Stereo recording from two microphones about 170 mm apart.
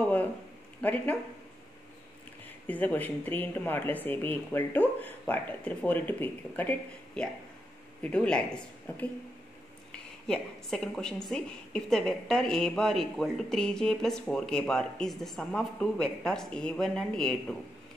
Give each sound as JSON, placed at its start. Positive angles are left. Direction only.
{"t": 0.0, "sound": "a sound", "side_deg": 10}
{"t": 0.7, "sound": "speech", "side_deg": 10}
{"t": 2.6, "sound": "a woman's voice", "side_deg": 10}
{"t": 10.2, "sound": "a woman's voice", "side_deg": 5}